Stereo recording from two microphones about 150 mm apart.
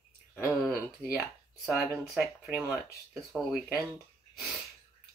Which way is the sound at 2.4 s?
Centre (ahead or behind).